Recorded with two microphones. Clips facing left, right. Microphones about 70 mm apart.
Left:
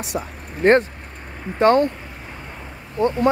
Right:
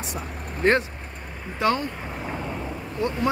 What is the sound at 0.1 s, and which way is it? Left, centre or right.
Speech, left.